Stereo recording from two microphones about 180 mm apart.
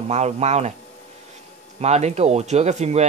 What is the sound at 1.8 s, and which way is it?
Speech, 40° right (ahead or behind).